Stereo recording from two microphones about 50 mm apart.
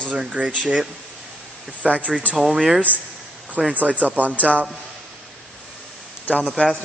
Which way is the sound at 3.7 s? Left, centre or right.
Right.